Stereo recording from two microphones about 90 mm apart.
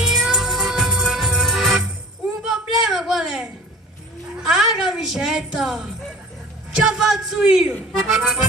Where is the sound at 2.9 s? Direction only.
Centre (ahead or behind).